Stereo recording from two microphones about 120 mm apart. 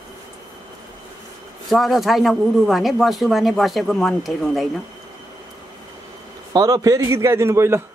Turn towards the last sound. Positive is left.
turn(degrees=-20)  # may be behind; listen again after turning